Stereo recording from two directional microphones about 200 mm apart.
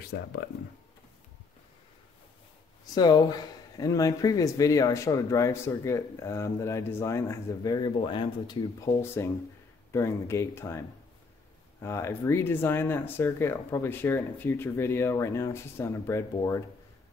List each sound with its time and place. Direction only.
0.1 s speech: 55° left (ahead or behind)
2.8 s speech: 20° left (ahead or behind)
11.8 s speech: 10° left (ahead or behind)